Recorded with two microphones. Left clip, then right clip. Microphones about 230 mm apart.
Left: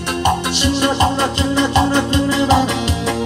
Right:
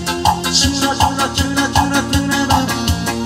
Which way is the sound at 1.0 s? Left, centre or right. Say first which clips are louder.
Right 1 dB; right.